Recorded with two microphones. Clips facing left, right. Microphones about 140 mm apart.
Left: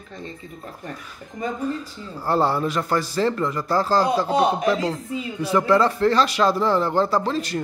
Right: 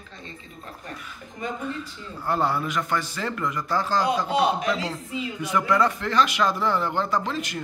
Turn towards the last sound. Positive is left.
turn(degrees=35)  # may be behind; listen again after turning